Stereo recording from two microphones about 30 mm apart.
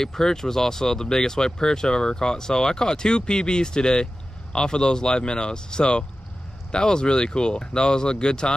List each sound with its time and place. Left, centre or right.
0.0 s speech: centre